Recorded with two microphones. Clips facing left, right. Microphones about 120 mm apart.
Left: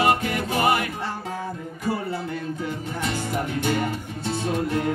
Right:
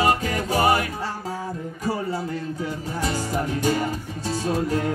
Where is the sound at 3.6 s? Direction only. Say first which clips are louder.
Right 1 dB; 35° right (ahead or behind).